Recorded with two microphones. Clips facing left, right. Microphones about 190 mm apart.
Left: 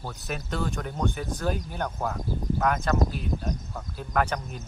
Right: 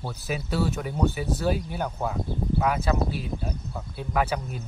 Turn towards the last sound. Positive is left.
turn(degrees=-5)  # may be behind; listen again after turning